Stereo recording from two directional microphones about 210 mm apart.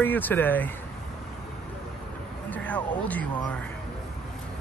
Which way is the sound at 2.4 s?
5° left (ahead or behind).